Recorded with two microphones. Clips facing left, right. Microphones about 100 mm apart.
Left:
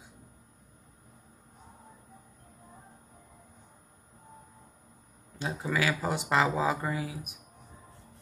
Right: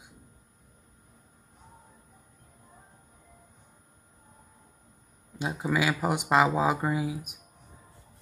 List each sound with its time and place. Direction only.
5.4 s speech: 15° right (ahead or behind)